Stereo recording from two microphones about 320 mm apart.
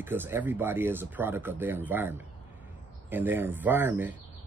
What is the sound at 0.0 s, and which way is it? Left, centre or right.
Speech, centre.